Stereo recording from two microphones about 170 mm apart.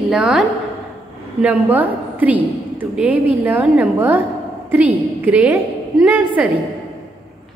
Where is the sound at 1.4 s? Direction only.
10° right (ahead or behind).